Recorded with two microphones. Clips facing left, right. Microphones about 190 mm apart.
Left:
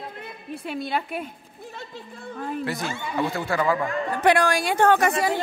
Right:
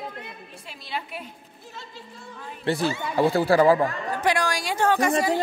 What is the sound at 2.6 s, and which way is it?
Speech, 30° right (ahead or behind).